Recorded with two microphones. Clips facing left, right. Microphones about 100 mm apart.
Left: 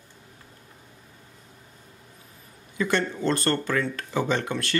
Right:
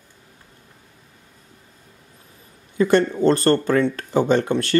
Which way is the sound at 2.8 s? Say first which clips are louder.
Right 9 dB; 45° right (ahead or behind).